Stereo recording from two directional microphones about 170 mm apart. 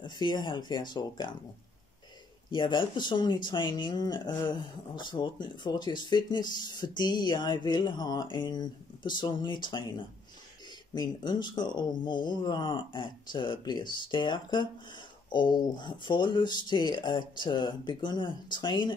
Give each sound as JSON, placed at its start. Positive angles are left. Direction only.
{"t": 0.0, "sound": "speech", "side_deg": 25}
{"t": 2.5, "sound": "speech", "side_deg": 30}